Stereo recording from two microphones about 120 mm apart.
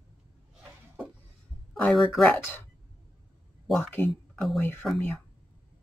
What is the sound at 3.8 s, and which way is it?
Speech, 15° left (ahead or behind).